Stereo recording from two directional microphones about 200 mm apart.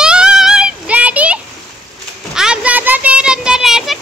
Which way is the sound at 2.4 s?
5° right (ahead or behind).